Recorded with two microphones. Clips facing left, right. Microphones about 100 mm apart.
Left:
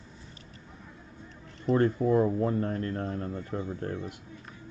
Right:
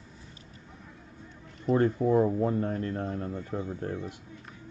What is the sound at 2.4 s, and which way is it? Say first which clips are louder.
Speech: even; 10° right (ahead or behind).